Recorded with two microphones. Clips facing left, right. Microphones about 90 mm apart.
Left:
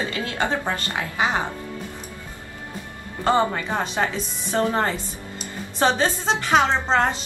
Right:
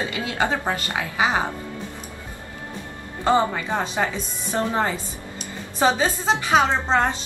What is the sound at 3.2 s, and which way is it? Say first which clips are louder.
A woman's voice: even; 10° right (ahead or behind).